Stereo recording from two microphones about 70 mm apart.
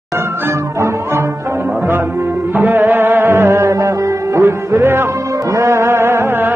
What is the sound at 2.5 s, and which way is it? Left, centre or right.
Music, right.